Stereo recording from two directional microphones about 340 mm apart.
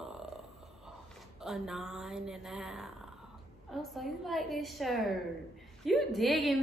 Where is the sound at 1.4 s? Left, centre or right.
Centre.